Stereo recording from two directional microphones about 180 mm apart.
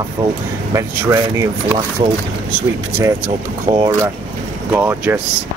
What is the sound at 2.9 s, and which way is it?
Speech, 15° right (ahead or behind).